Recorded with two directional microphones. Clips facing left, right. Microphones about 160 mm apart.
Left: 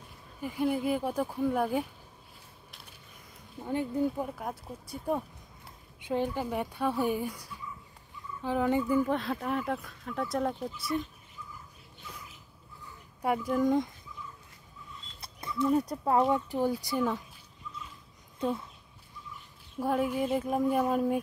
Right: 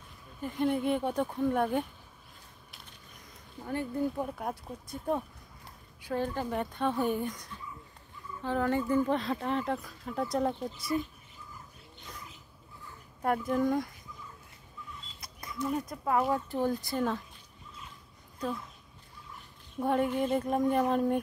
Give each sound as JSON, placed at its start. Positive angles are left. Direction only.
{"t": 0.4, "sound": "speech", "side_deg": 5}
{"t": 3.6, "sound": "speech", "side_deg": 15}
{"t": 4.2, "sound": "speech", "side_deg": 0}
{"t": 5.9, "sound": "speech", "side_deg": 20}
{"t": 13.6, "sound": "speech", "side_deg": 20}
{"t": 15.1, "sound": "a sound", "side_deg": 30}
{"t": 15.7, "sound": "speech", "side_deg": 35}
{"t": 16.4, "sound": "speech", "side_deg": 10}
{"t": 19.8, "sound": "speech", "side_deg": 5}